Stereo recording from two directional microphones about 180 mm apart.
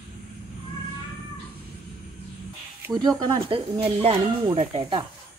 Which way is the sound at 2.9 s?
25° right (ahead or behind).